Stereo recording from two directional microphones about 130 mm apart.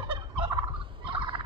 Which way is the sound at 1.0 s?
40° right (ahead or behind).